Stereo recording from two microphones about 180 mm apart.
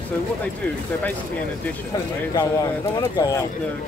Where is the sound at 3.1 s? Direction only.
20° left (ahead or behind).